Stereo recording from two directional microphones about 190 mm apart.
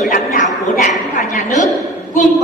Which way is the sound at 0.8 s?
40° left (ahead or behind).